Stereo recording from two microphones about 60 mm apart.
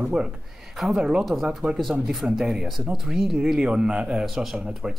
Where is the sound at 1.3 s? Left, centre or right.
Right.